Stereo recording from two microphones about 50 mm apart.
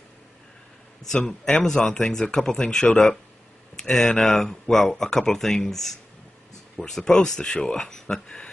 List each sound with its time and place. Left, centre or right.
1.1 s speech: centre